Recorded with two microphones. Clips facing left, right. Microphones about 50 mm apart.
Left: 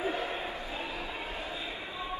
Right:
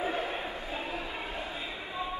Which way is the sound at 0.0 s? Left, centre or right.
Right.